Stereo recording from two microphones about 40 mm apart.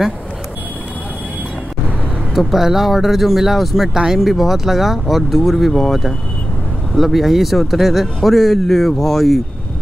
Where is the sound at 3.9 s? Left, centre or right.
Centre.